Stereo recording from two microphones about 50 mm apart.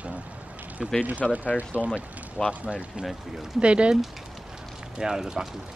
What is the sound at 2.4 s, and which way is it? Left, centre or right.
Speech, centre.